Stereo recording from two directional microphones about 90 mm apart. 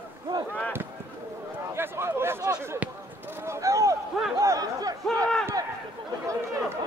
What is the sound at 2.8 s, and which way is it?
Chop, 25° right (ahead or behind).